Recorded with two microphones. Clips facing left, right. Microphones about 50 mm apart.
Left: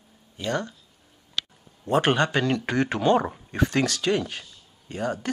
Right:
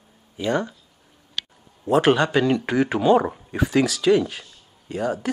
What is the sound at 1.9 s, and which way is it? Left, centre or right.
Speech, centre.